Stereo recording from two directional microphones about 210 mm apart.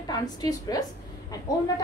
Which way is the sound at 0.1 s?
20° left (ahead or behind).